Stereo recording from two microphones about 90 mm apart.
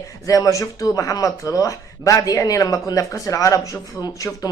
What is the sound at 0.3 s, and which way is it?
Speech, 40° left (ahead or behind).